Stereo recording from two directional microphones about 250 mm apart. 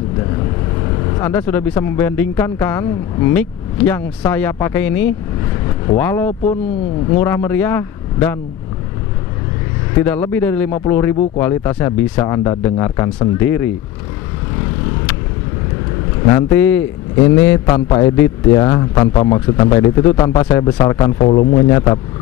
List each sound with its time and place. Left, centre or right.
1.2 s a man's voice: centre
10.0 s a man's voice: centre
16.3 s a man's voice: centre